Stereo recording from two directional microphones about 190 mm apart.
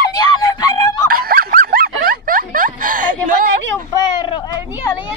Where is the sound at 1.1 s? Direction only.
50° right (ahead or behind).